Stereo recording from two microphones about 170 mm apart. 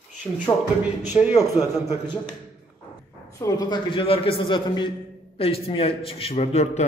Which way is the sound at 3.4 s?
25° left (ahead or behind).